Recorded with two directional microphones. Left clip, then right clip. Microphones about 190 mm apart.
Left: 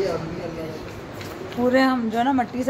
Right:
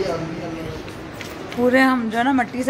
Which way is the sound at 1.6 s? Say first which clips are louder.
Right 3 dB; 15° right (ahead or behind).